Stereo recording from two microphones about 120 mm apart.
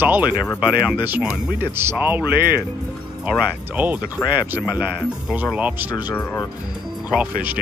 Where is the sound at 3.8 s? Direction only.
15° right (ahead or behind).